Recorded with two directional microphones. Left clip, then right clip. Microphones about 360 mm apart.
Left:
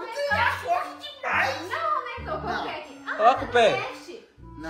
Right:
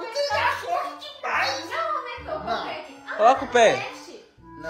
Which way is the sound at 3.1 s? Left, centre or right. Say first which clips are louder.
Right 2 dB; centre.